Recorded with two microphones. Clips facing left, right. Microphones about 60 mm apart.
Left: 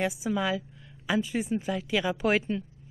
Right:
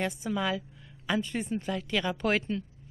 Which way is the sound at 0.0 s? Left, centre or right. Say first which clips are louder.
Left 2 dB; centre.